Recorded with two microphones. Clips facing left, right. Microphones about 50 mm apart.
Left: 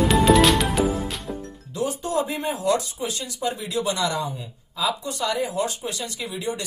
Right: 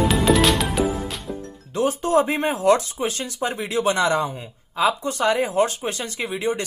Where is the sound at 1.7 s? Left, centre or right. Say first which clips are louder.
Right 6 dB; right.